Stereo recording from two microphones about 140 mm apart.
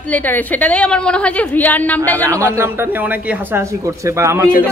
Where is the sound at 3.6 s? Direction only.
20° right (ahead or behind).